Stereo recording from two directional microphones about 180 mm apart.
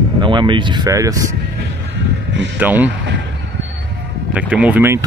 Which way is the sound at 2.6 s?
10° right (ahead or behind).